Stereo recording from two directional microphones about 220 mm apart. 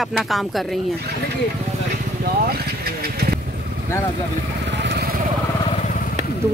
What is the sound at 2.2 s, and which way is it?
Vehicle, 45° right (ahead or behind).